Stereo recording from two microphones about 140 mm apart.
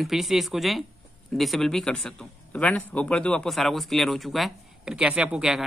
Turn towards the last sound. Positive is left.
turn(degrees=-5)  # may be behind; listen again after turning